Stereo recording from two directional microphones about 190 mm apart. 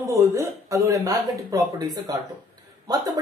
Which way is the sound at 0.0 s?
15° right (ahead or behind).